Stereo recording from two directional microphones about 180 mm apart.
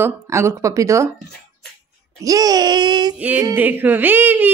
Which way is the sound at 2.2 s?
20° right (ahead or behind).